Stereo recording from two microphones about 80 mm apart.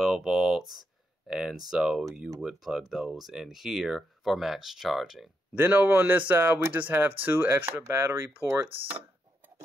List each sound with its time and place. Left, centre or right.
0.0 s speech: centre
5.5 s speech: right